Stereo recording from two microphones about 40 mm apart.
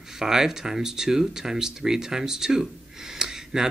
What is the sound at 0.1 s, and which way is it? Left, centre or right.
Speech, centre.